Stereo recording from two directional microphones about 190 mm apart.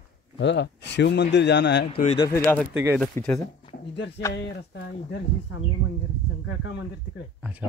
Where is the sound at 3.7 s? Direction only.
65° left (ahead or behind).